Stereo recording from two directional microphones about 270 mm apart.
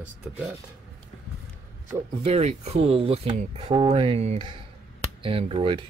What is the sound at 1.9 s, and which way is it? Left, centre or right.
Speech, right.